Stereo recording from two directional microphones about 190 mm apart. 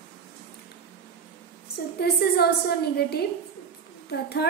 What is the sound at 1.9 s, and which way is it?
A woman's voice, 55° left (ahead or behind).